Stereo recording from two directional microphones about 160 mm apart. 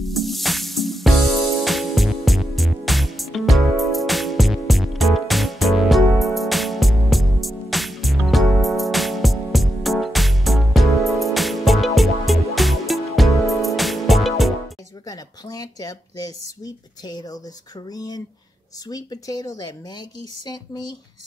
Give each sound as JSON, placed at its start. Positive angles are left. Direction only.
{"t": 0.0, "sound": "music", "side_deg": 0}
{"t": 15.0, "sound": "a sound", "side_deg": 25}
{"t": 17.9, "sound": "speech", "side_deg": 25}